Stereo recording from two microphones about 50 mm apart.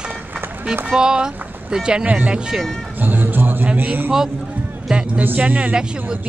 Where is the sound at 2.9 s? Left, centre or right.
Right.